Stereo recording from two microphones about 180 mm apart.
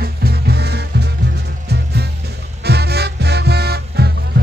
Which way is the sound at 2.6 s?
65° right (ahead or behind).